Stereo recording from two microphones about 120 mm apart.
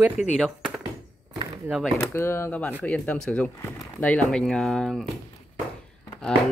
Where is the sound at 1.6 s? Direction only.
5° right (ahead or behind).